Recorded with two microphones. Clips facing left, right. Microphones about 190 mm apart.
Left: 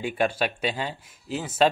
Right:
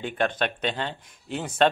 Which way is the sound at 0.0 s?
10° left (ahead or behind).